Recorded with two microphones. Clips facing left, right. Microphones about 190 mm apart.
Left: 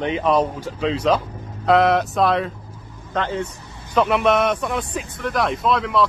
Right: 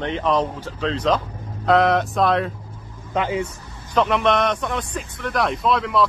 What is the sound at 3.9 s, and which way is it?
Speech, 5° left (ahead or behind).